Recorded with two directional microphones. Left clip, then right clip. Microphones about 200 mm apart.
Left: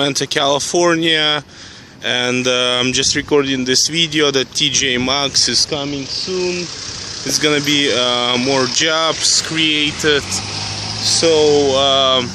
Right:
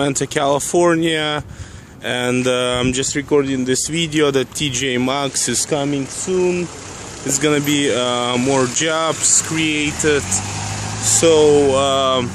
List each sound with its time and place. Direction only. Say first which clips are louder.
0.0 s speech: left 2 dB; 5° right (ahead or behind)
3.3 s speech: left 2 dB; 10° left (ahead or behind)
3.9 s speech: left 2 dB; 5° right (ahead or behind)
5.7 s speech: right 1 dB; 20° right (ahead or behind)
7.4 s speech: left 2 dB; centre (ahead or behind)